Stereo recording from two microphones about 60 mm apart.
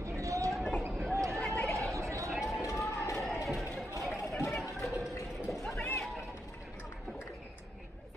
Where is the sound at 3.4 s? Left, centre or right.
Centre.